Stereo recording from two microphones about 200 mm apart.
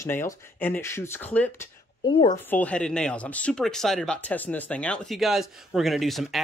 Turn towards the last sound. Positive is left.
turn(degrees=0)  # may be behind; listen again after turning